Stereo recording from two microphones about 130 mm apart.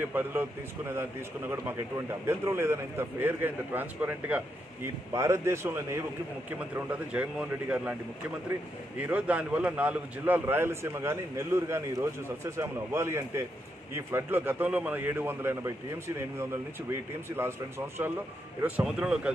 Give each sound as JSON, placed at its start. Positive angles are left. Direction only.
{"t": 0.0, "sound": "a man's voice", "side_deg": -15}
{"t": 8.9, "sound": "a man's voice", "side_deg": -10}
{"t": 18.6, "sound": "speech", "side_deg": -5}